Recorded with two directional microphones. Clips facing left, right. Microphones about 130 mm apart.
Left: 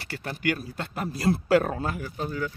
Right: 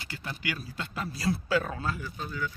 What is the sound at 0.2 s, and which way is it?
A man's voice, 55° left (ahead or behind).